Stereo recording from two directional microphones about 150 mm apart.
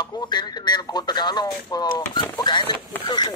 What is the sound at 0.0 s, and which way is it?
Speech, 30° left (ahead or behind).